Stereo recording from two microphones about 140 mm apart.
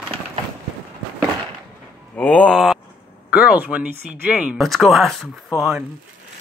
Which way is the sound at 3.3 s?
10° right (ahead or behind).